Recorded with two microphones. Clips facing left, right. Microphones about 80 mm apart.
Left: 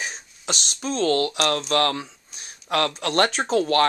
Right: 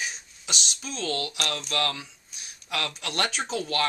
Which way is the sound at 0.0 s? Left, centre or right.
Left.